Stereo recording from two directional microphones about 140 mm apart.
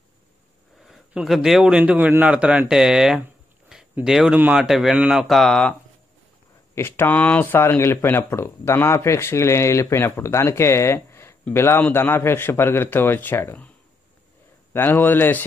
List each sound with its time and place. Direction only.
0.8 s a man's voice: centre (ahead or behind)
6.7 s speech: 15° left (ahead or behind)
14.7 s speech: 15° left (ahead or behind)